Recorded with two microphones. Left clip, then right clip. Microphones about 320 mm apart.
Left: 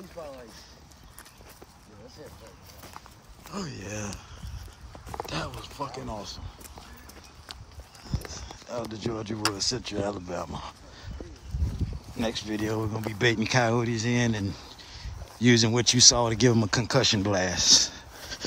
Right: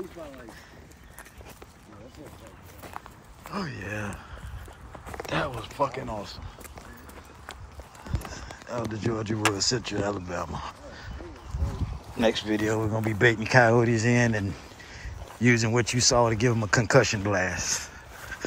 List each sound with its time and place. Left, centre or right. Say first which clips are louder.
3.5 s speech: right 3 dB; centre
5.2 s speech: right 6 dB; centre
8.3 s speech: right 2 dB; centre
12.2 s speech: right 6 dB; centre